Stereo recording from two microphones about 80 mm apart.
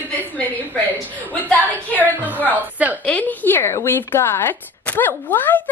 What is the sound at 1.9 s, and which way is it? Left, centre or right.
A woman's voice, right.